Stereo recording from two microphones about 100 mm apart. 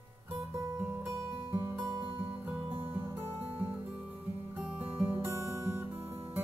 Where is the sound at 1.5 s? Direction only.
30° right (ahead or behind).